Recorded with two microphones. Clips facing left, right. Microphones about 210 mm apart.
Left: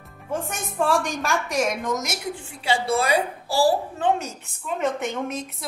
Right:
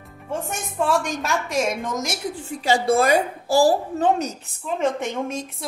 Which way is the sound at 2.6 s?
45° right (ahead or behind).